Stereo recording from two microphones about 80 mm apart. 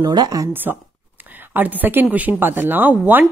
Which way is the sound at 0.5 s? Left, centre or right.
Right.